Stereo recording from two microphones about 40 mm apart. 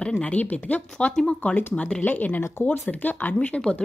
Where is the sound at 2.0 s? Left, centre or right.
Left.